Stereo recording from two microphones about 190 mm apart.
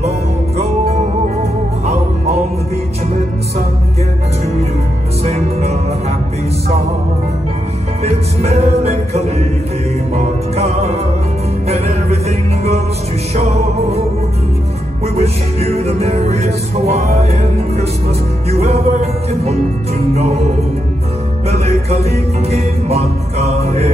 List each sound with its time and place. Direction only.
0.6 s music: 35° right (ahead or behind)
5.2 s music: 35° right (ahead or behind)
8.0 s music: 35° right (ahead or behind)
15.1 s music: 35° right (ahead or behind)